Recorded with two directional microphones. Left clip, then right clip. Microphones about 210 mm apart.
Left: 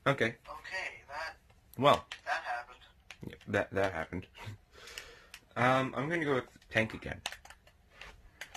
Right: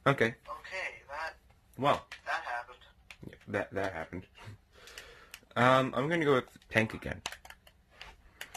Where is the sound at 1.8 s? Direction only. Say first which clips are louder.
Left 3 dB; 30° left (ahead or behind).